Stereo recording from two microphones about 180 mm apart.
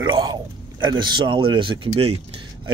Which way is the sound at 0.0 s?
25° right (ahead or behind).